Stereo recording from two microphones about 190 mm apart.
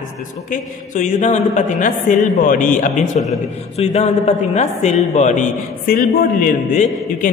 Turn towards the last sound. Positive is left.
turn(degrees=45)  # may be behind; listen again after turning